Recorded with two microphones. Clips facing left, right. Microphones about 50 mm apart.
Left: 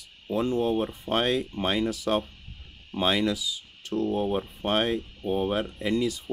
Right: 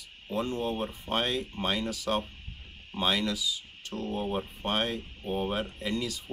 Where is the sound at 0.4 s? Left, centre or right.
Centre.